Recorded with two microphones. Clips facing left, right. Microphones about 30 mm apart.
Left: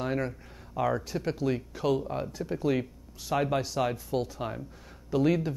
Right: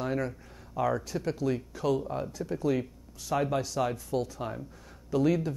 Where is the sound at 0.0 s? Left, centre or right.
Centre.